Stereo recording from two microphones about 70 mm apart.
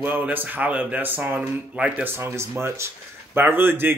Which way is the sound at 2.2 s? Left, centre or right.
Right.